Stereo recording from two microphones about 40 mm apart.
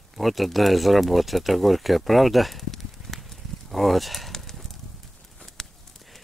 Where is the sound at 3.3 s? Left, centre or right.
Centre.